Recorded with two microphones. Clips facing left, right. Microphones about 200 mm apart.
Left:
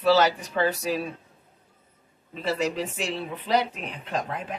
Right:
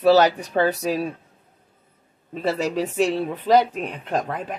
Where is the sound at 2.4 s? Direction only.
45° right (ahead or behind).